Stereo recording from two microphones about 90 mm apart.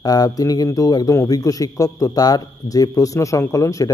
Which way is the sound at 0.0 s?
45° left (ahead or behind).